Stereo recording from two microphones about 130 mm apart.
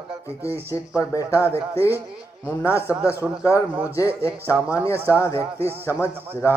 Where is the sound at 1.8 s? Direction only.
15° right (ahead or behind).